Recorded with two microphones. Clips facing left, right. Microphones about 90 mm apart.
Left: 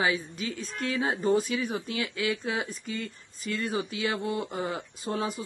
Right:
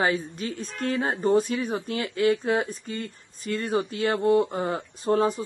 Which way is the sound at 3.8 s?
50° right (ahead or behind).